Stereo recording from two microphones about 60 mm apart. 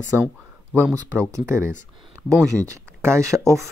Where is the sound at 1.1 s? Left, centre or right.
Right.